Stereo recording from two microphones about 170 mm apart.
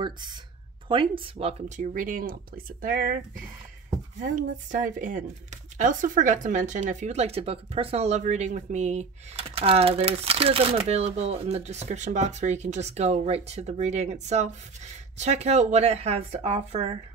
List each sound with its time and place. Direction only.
0.0 s speech: 25° right (ahead or behind)
1.8 s speech: 50° right (ahead or behind)
4.2 s speech: 50° right (ahead or behind)